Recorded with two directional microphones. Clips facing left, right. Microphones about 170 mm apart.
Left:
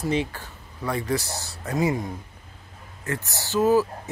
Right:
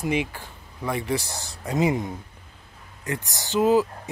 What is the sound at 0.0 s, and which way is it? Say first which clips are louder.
Speech: even; 15° right (ahead or behind).